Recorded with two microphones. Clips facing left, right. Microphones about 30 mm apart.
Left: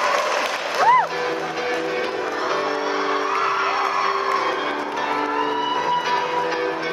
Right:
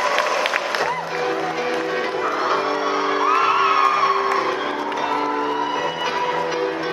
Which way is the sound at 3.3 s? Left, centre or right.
Right.